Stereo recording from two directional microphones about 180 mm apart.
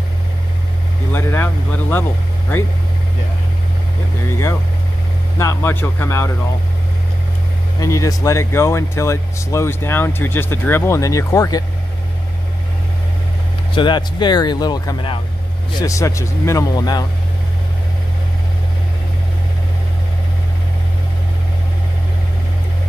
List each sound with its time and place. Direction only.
1.1 s vehicle: 10° left (ahead or behind)
5.4 s speech: 15° left (ahead or behind)
7.8 s speech: 20° left (ahead or behind)
13.7 s speech: 25° left (ahead or behind)